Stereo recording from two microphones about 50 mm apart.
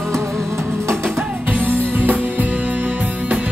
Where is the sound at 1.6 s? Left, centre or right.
Right.